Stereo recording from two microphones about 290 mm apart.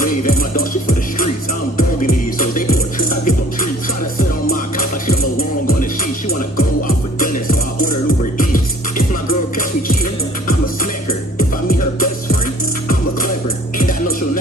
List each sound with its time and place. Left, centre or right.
0.0 s music: left
1.8 s music: left
8.4 s music: left
11.1 s music: left
13.7 s music: left